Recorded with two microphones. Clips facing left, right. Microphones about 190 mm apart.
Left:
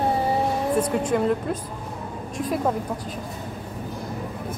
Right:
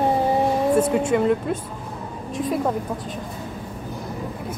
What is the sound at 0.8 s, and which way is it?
A woman's voice, 5° right (ahead or behind).